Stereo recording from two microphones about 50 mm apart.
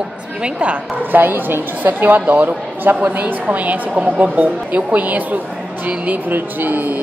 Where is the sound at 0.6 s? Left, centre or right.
Right.